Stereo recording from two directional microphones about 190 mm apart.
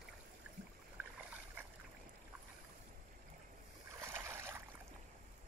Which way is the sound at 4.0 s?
15° right (ahead or behind).